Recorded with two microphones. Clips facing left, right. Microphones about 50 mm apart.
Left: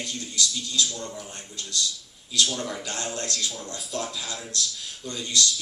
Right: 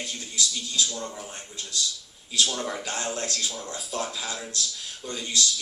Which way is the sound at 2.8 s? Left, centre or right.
Centre.